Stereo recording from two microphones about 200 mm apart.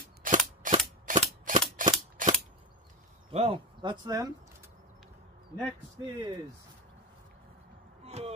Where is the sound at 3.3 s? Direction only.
30° right (ahead or behind).